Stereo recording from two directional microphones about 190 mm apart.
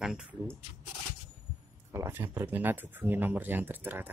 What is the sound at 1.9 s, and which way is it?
Speech, 15° right (ahead or behind).